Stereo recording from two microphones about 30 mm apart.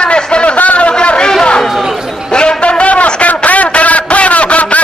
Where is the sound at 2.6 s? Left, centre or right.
Left.